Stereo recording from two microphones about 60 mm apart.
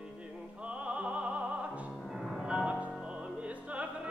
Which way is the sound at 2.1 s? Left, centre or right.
Centre.